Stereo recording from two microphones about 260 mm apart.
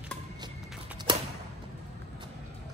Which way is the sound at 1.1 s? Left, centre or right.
Centre.